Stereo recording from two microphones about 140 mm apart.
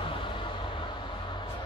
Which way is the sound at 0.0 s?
40° left (ahead or behind).